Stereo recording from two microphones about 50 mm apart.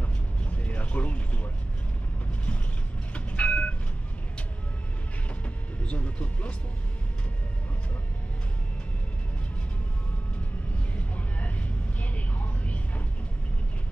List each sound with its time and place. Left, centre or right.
0.0 s mechanisms: left
3.3 s vehicle: left
5.9 s a sound: left
11.0 s vehicle: left